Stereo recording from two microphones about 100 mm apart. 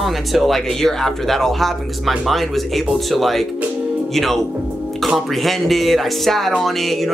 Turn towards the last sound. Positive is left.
turn(degrees=0)  # may be behind; listen again after turning